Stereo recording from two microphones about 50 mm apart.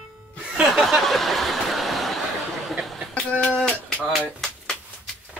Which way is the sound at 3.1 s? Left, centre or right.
Left.